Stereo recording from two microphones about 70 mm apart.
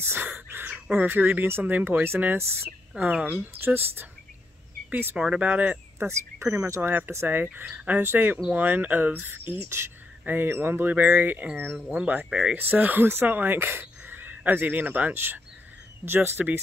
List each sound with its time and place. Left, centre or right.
0.0 s speech: right
0.3 s whispering: right
0.7 s a sound: right
1.0 s speech: right
3.0 s speech: centre
3.3 s speech: right
4.8 s a sound: right
5.1 s speech: centre
5.9 s speech: right
12.3 s speech: centre
12.5 s speech: right